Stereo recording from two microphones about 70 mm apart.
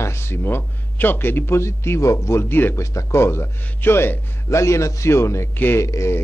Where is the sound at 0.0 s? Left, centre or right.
Left.